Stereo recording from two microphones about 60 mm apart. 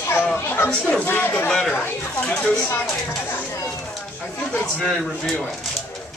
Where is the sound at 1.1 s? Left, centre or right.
Left.